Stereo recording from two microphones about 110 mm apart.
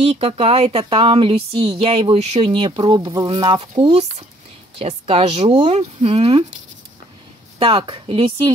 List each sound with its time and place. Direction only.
0.1 s speech: 65° right (ahead or behind)
2.5 s speech: 50° right (ahead or behind)
4.7 s speech: 60° right (ahead or behind)
7.5 s speech: 55° right (ahead or behind)